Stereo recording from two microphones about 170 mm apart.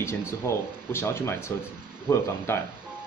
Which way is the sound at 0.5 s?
15° left (ahead or behind).